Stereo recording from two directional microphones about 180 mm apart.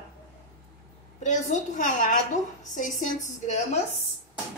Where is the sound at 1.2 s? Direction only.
40° left (ahead or behind).